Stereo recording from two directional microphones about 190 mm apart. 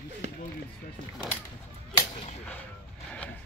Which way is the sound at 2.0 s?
30° left (ahead or behind).